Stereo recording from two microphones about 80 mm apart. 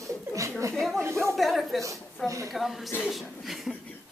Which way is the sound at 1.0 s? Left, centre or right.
Right.